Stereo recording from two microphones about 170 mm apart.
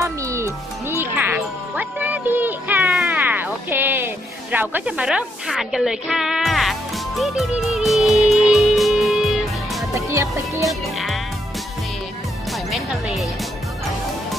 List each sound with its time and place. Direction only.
0.0 s music: 15° right (ahead or behind); by 9.8 s centre (ahead or behind)
9.9 s music: 15° right (ahead or behind)
10.6 s music: centre (ahead or behind)
12.7 s music: centre (ahead or behind)